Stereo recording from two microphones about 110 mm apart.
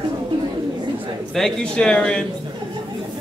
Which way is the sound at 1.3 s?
5° left (ahead or behind).